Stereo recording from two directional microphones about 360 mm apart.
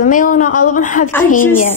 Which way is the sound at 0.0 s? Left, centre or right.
Left.